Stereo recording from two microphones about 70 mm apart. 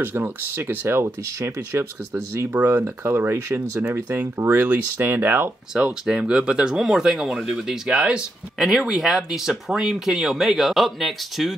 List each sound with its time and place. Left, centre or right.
0.0 s speech: right
2.5 s speech: right
5.7 s speech: centre
8.5 s speech: centre